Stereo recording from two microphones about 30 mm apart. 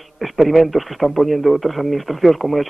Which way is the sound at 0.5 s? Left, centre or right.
Centre.